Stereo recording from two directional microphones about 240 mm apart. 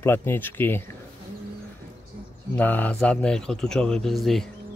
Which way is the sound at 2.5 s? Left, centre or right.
Centre.